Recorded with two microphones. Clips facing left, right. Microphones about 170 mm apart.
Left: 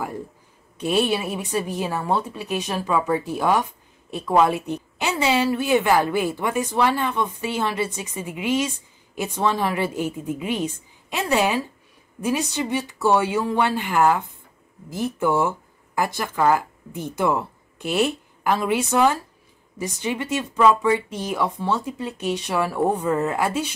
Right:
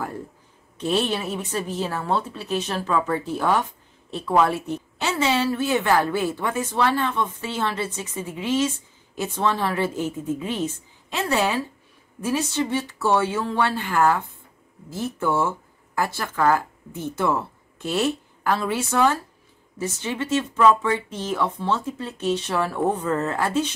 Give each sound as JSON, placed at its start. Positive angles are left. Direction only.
{"t": 0.7, "sound": "a woman's voice", "side_deg": 10}